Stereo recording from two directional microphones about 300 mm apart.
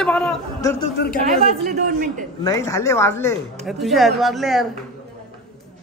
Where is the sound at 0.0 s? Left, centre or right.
Centre.